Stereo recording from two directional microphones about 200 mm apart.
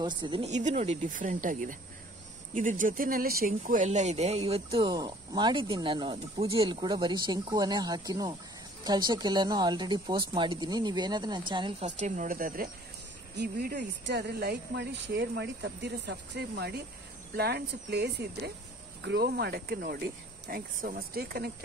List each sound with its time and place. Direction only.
0.0 s speech: 25° right (ahead or behind)
11.8 s speech: 40° right (ahead or behind)